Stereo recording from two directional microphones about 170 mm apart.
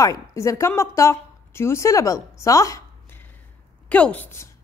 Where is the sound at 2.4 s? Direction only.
20° left (ahead or behind).